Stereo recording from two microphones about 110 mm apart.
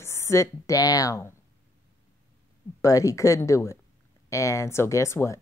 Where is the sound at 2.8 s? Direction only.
30° left (ahead or behind).